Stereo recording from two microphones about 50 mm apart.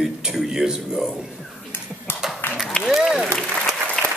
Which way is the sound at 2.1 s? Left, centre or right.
Left.